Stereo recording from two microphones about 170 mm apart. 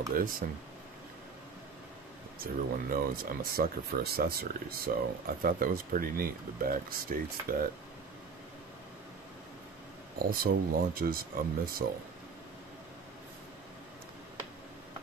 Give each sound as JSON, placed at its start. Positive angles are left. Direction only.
{"t": 0.1, "sound": "speech", "side_deg": -55}
{"t": 2.3, "sound": "speech", "side_deg": -60}
{"t": 10.1, "sound": "speech", "side_deg": -60}